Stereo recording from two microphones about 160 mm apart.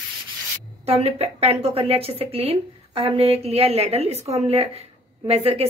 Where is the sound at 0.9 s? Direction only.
40° right (ahead or behind).